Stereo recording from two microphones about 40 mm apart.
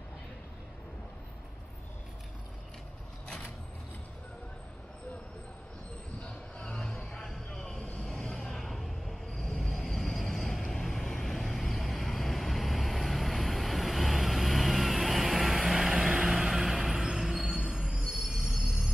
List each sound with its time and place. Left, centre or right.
6.2 s music: left
7.1 s music: centre
7.8 s vehicle: left
8.5 s a sound: centre
9.4 s vehicle: centre
17.6 s train wheels squealing: right
18.0 s train wheels squealing: centre
18.5 s train: centre